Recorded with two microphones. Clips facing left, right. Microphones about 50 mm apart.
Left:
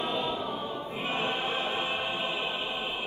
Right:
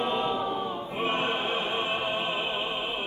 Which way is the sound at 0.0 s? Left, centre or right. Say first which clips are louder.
Right 4 dB; right.